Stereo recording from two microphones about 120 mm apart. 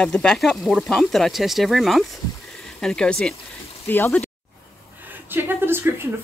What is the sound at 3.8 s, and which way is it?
Speech, 20° left (ahead or behind).